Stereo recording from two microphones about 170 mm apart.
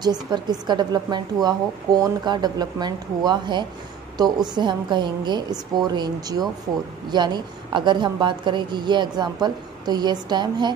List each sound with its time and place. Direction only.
0.0 s a woman's voice: 25° right (ahead or behind)